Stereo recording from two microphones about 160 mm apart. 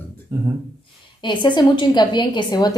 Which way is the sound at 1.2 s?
30° left (ahead or behind).